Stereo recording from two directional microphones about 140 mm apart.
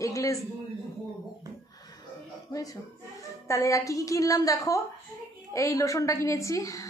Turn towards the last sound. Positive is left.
turn(degrees=20)  # may be behind; listen again after turning